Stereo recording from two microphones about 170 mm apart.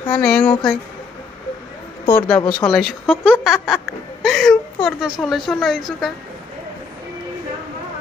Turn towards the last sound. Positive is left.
turn(degrees=0)  # may be behind; listen again after turning